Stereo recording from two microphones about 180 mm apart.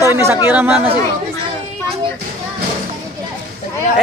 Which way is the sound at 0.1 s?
15° right (ahead or behind).